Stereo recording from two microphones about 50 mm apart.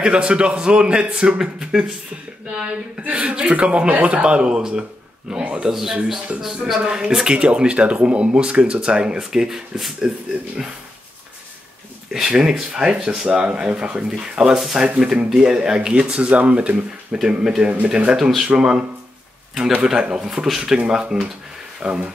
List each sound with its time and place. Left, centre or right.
0.0 s speech: centre
1.4 s speech: centre
2.5 s speech: right
5.7 s speech: centre
12.1 s speech: centre
14.4 s speech: centre
18.1 s speech: centre
18.5 s speech: centre
19.9 s speech: centre